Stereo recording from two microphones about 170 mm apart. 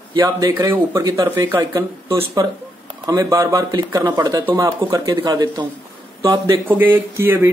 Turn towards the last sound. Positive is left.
turn(degrees=-15)  # may be behind; listen again after turning